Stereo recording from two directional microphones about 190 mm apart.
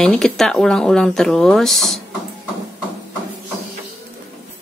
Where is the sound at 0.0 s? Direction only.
5° left (ahead or behind).